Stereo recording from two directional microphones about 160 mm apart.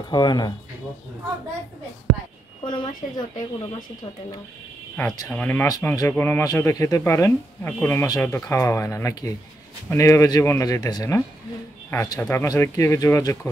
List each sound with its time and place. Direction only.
0.1 s speech: 25° left (ahead or behind)
2.6 s speech: 30° left (ahead or behind)
5.1 s speech: 20° left (ahead or behind)